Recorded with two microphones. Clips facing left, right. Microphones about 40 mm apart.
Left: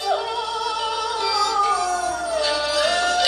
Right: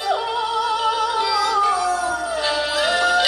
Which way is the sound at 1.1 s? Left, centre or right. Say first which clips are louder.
Right 2 dB; right.